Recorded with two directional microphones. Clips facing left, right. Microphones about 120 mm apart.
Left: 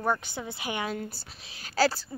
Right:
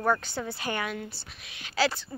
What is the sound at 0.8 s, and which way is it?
A woman's voice, 35° left (ahead or behind).